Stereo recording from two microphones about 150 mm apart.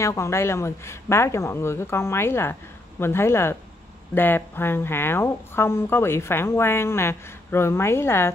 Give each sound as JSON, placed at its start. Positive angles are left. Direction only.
{"t": 0.0, "sound": "speech", "side_deg": 20}